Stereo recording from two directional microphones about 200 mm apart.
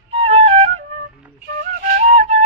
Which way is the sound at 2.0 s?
35° right (ahead or behind).